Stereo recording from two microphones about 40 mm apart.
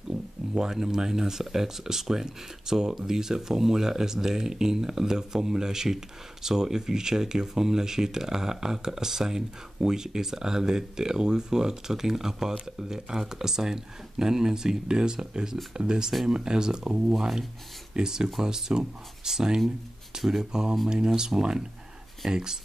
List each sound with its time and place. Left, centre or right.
0.6 s speech: centre